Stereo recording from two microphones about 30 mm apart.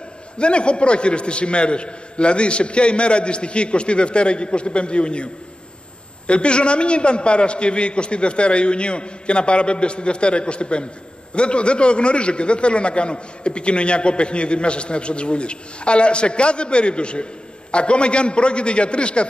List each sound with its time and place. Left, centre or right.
0.4 s a man's voice: left